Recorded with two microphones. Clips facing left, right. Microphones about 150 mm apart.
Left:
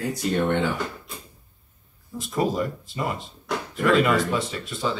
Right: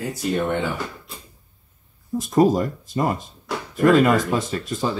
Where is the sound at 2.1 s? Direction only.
45° right (ahead or behind).